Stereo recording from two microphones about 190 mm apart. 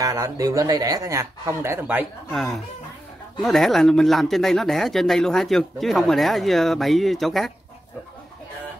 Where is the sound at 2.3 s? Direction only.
Centre (ahead or behind).